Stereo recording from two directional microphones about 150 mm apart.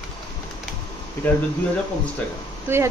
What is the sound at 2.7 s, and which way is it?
Speech, 15° right (ahead or behind).